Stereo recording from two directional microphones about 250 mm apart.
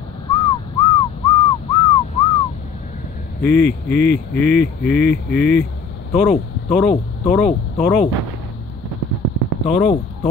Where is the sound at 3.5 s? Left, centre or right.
Centre.